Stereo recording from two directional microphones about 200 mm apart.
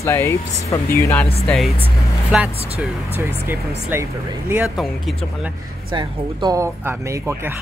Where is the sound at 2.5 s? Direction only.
30° right (ahead or behind).